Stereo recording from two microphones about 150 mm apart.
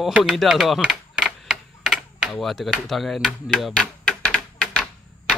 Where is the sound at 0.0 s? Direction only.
Centre (ahead or behind).